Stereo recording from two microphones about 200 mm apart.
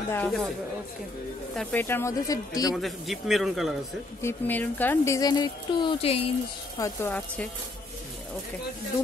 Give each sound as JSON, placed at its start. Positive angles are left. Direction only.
{"t": 0.1, "sound": "a man's voice", "side_deg": 5}
{"t": 1.6, "sound": "speech", "side_deg": 10}
{"t": 2.7, "sound": "a man's voice", "side_deg": 0}
{"t": 4.2, "sound": "speech", "side_deg": 10}
{"t": 6.8, "sound": "speech", "side_deg": 10}